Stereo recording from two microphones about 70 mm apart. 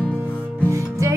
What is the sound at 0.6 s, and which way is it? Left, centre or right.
Music, right.